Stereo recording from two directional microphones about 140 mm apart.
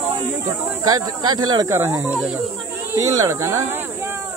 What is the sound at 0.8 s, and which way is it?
Speech, 30° right (ahead or behind).